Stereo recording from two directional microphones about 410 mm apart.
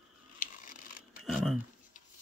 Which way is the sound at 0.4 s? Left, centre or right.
Centre.